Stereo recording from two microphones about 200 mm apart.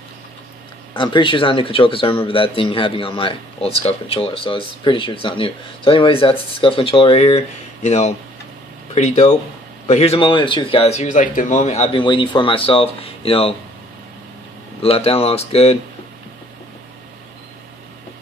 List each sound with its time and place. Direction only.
0.9 s speech: 25° left (ahead or behind)
14.8 s speech: 30° left (ahead or behind)